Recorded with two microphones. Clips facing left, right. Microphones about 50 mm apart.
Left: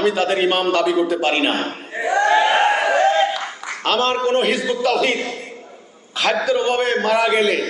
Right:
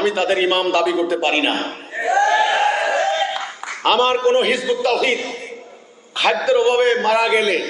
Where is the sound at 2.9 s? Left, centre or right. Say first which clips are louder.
Left 3 dB; centre.